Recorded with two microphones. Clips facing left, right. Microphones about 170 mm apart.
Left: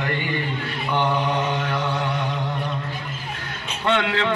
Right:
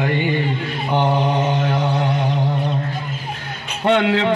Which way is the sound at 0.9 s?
35° right (ahead or behind).